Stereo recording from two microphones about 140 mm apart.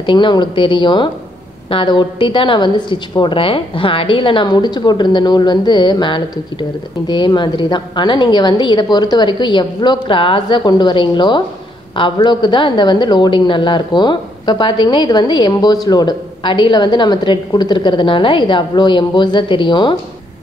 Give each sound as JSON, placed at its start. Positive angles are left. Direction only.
{"t": 0.0, "sound": "a woman's voice", "side_deg": 35}